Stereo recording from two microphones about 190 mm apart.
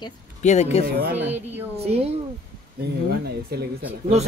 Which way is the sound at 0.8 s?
55° right (ahead or behind).